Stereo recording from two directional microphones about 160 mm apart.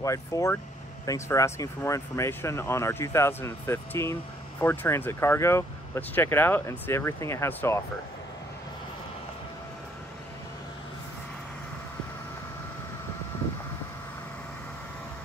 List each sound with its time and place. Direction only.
0.0 s speech: 20° left (ahead or behind)